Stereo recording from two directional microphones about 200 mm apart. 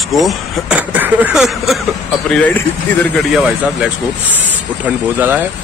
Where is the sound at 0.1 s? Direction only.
Centre (ahead or behind).